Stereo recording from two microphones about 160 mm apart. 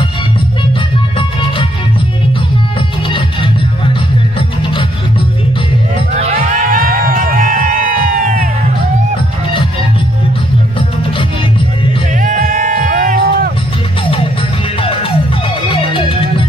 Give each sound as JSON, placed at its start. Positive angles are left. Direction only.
{"t": 6.6, "sound": "music", "side_deg": -60}
{"t": 12.2, "sound": "music", "side_deg": -60}